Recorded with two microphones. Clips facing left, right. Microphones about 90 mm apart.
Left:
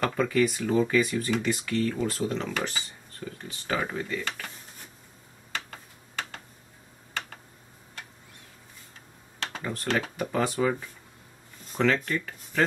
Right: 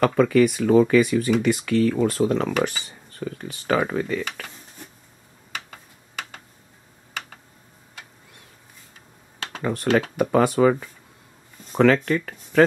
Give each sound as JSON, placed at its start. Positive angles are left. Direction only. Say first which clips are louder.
{"t": 0.0, "sound": "speech", "louder": "right 7 dB", "side_deg": -70}
{"t": 5.5, "sound": "a sound", "louder": "even", "side_deg": -10}
{"t": 9.6, "sound": "speech", "louder": "right 8 dB", "side_deg": -65}